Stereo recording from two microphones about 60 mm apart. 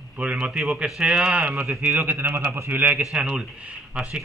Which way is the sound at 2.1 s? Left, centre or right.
Right.